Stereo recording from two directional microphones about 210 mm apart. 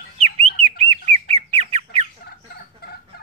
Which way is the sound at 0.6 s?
30° right (ahead or behind).